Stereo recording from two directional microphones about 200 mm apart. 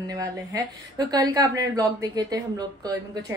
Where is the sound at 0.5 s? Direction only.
20° right (ahead or behind).